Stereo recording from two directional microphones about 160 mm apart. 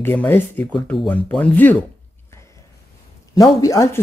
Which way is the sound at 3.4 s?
20° left (ahead or behind).